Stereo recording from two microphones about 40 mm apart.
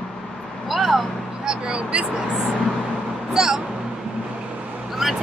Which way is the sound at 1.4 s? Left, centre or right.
Right.